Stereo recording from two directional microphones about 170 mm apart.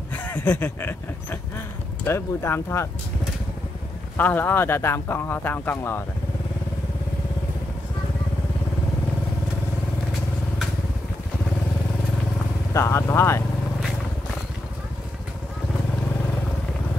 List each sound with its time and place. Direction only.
0.1 s speech: 10° left (ahead or behind)
4.2 s speech: 10° left (ahead or behind)
12.7 s speech: 15° left (ahead or behind)